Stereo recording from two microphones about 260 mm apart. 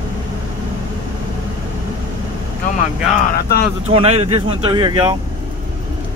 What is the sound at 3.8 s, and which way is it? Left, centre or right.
Speech, right.